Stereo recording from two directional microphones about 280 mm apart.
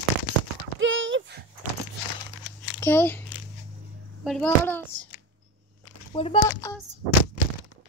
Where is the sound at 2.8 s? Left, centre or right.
Centre.